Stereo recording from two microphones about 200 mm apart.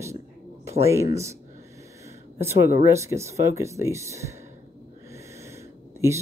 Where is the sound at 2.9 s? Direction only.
15° right (ahead or behind).